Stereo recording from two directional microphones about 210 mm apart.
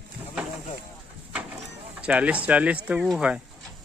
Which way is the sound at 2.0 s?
5° right (ahead or behind).